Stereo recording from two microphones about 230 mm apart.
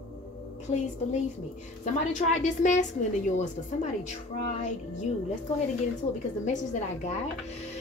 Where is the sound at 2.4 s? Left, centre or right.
Left.